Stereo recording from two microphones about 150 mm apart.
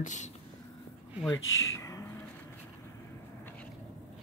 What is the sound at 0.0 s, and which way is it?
Speech, 55° left (ahead or behind).